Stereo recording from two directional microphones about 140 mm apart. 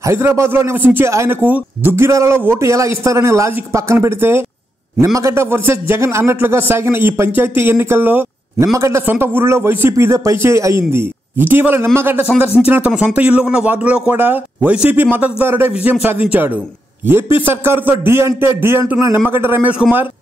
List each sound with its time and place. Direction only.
0.0 s a man's voice: 15° right (ahead or behind)